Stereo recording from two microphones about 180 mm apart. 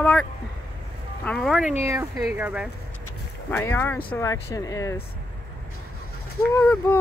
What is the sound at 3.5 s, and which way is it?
Speech, 15° left (ahead or behind).